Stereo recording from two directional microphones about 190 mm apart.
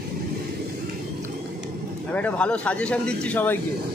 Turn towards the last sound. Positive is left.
turn(degrees=10)  # may be behind; listen again after turning